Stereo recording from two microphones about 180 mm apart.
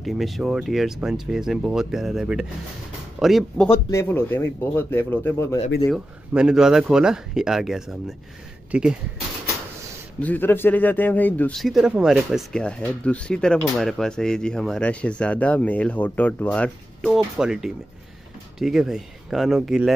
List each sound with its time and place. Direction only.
0.0 s speech: centre (ahead or behind)
3.9 s speech: 15° left (ahead or behind)
5.9 s speech: 5° right (ahead or behind)
10.2 s speech: 10° left (ahead or behind)